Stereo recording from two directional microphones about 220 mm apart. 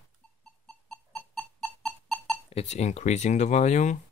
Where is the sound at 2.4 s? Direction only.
30° left (ahead or behind).